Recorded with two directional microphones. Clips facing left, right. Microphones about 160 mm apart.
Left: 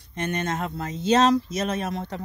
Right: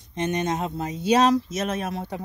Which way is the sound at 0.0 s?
15° right (ahead or behind).